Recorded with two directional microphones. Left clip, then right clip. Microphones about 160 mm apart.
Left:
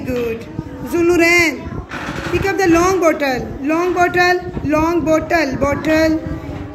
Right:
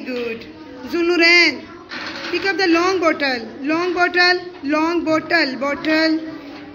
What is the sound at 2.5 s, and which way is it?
A man's voice, 15° left (ahead or behind).